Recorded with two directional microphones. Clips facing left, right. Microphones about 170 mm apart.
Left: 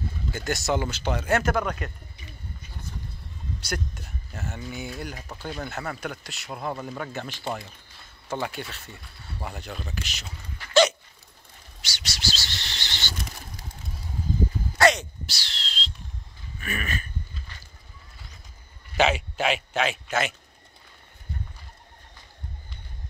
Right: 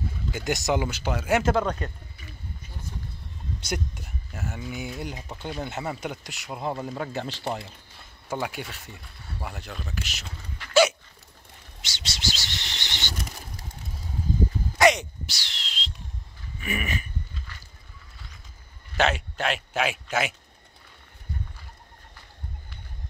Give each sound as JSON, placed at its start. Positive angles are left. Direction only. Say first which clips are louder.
{"t": 0.3, "sound": "speech", "louder": "right 1 dB", "side_deg": -15}
{"t": 1.4, "sound": "speech", "louder": "right 2 dB", "side_deg": -25}
{"t": 3.6, "sound": "speech", "louder": "right 1 dB", "side_deg": -15}
{"t": 8.3, "sound": "speech", "louder": "even", "side_deg": -10}
{"t": 10.7, "sound": "hiccup", "louder": "even", "side_deg": -10}
{"t": 11.8, "sound": "bird", "louder": "even", "side_deg": -25}
{"t": 14.8, "sound": "a sound", "louder": "right 1 dB", "side_deg": -15}
{"t": 18.9, "sound": "speech", "louder": "left 2 dB", "side_deg": 0}